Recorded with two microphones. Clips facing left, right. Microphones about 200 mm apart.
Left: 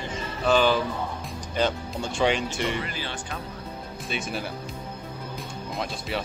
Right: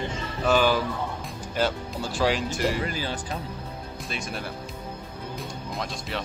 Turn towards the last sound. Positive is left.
turn(degrees=0)  # may be behind; listen again after turning